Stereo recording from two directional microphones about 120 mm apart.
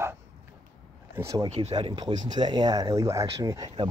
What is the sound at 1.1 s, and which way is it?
Speech, 25° right (ahead or behind).